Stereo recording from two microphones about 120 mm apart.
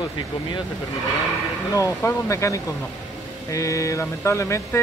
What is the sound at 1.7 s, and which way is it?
Speech, 25° left (ahead or behind).